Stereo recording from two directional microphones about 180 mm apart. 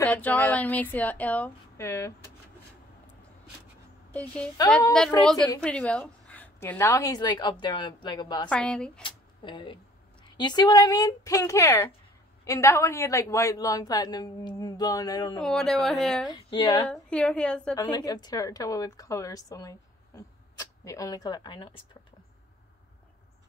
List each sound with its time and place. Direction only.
0.0 s speech: 10° left (ahead or behind)
4.1 s a woman's voice: 10° left (ahead or behind); by 8.5 s 25° left (ahead or behind)
8.5 s speech: 5° left (ahead or behind)
9.0 s a sound: 25° left (ahead or behind)
10.2 s a woman's voice: 25° left (ahead or behind)
15.3 s speech: 5° left (ahead or behind)
16.3 s a woman's voice: 25° left (ahead or behind)
16.9 s speech: 5° left (ahead or behind)
17.9 s a woman's voice: 20° left (ahead or behind)